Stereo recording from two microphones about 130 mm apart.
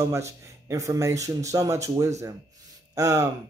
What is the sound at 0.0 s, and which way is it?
Speech, 25° right (ahead or behind).